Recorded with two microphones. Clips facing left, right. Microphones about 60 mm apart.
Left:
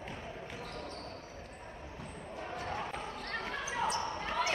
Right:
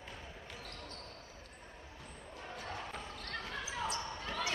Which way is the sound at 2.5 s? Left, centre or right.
Left.